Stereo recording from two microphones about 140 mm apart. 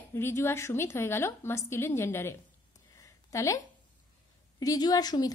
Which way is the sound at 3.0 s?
25° left (ahead or behind).